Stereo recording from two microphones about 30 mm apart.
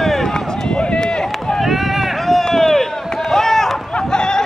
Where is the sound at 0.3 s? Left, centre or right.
Left.